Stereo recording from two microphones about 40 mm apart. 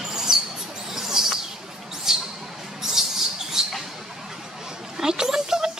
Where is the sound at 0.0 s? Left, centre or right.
Centre.